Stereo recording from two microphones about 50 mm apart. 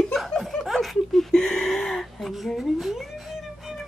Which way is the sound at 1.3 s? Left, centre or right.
Centre.